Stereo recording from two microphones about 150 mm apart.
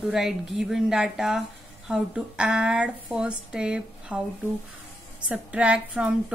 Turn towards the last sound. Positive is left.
turn(degrees=-10)  # may be behind; listen again after turning